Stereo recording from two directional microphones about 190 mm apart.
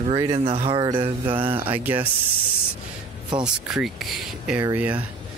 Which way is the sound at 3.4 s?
5° right (ahead or behind).